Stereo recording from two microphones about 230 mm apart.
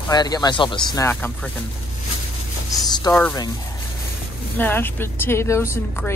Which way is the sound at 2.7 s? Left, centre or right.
Centre.